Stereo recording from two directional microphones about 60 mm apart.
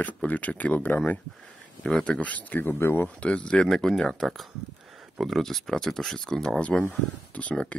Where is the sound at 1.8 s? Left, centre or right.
Centre.